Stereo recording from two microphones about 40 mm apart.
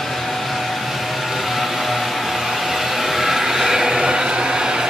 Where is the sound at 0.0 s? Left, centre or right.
Centre.